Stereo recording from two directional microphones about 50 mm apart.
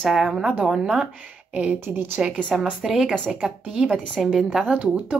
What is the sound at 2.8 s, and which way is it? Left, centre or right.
Speech, centre.